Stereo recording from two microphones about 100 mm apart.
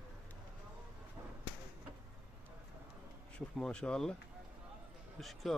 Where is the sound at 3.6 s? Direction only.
10° left (ahead or behind).